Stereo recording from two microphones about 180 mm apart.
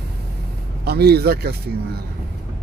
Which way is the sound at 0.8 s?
60° right (ahead or behind).